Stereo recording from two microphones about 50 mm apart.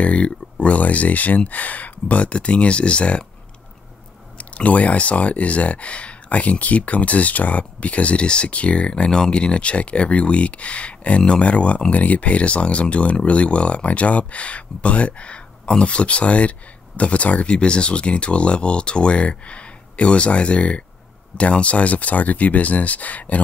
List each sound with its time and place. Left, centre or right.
0.0 s speech: left
4.4 s speech: left